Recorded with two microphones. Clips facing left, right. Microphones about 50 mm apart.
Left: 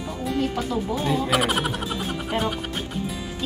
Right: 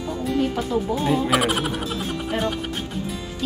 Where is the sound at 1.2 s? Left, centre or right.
Centre.